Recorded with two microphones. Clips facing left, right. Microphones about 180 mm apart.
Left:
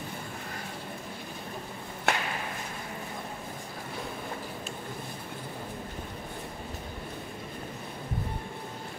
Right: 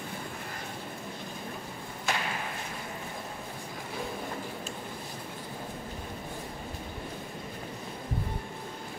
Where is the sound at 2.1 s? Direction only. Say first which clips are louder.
Left 3 dB; 65° left (ahead or behind).